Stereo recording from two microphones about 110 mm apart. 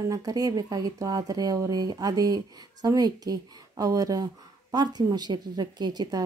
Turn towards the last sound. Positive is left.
turn(degrees=-40)  # may be behind; listen again after turning